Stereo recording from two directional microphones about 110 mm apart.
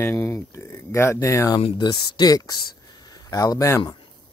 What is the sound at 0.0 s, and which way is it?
Speech, 20° left (ahead or behind).